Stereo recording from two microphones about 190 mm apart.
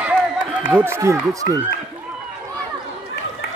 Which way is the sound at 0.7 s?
10° right (ahead or behind).